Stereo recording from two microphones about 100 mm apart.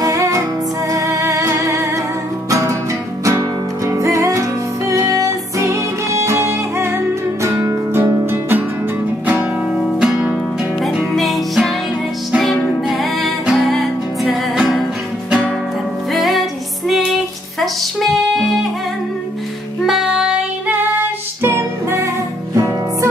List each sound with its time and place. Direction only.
0.0 s music: 35° right (ahead or behind)
3.3 s music: 30° right (ahead or behind)
9.9 s music: 5° right (ahead or behind)
16.1 s music: centre (ahead or behind)
19.9 s child singing: 5° right (ahead or behind)
21.4 s music: 25° right (ahead or behind)